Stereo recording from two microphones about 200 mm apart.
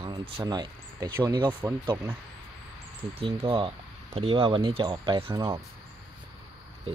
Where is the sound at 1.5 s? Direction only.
10° right (ahead or behind).